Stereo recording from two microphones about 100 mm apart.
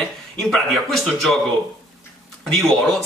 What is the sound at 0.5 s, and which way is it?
Speech, 5° left (ahead or behind).